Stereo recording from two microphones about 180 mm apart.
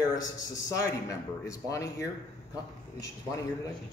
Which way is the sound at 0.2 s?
20° left (ahead or behind).